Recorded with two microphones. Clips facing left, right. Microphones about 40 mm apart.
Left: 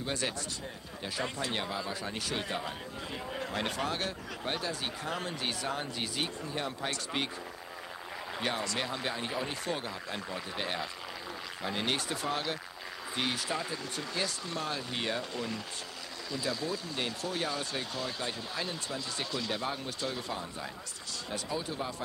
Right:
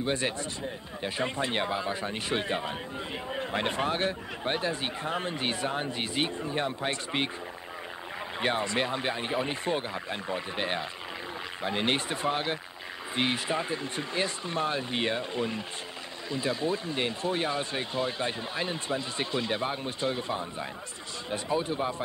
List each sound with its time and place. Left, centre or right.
0.0 s speech: right
8.4 s speech: right